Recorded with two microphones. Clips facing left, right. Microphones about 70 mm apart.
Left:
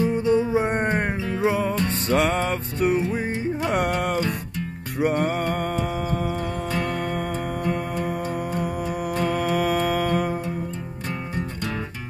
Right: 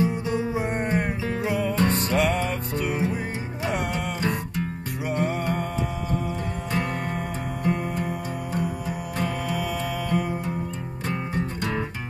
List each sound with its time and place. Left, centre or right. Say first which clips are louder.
0.0 s music: left 5 dB; left
1.8 s music: right 1 dB; right
2.1 s music: left 6 dB; left
3.6 s music: left 3 dB; left
9.2 s music: left 5 dB; left